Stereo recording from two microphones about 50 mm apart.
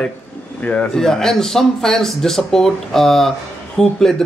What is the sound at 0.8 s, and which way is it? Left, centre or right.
Speech, centre.